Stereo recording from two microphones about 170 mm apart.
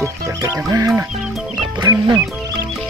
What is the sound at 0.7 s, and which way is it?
Speech, 20° right (ahead or behind).